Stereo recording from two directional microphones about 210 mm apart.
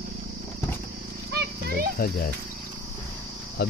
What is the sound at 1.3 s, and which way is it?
Horse, 50° right (ahead or behind).